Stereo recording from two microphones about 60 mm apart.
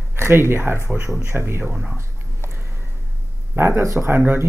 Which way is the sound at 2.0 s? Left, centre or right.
Right.